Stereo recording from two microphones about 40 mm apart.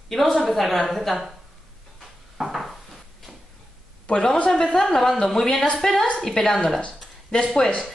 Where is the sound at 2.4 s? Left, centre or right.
Centre.